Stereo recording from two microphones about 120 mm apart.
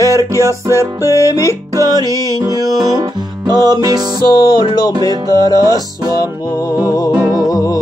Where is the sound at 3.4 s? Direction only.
35° right (ahead or behind).